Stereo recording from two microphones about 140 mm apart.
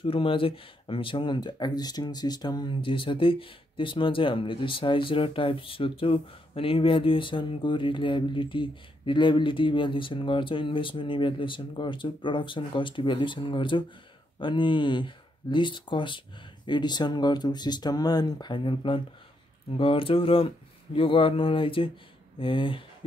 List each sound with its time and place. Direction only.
0.0 s speech: 40° left (ahead or behind)